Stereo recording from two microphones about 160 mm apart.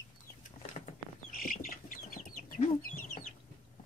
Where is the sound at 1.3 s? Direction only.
60° left (ahead or behind).